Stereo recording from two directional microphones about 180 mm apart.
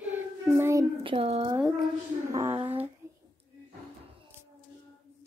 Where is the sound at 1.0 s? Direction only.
35° right (ahead or behind).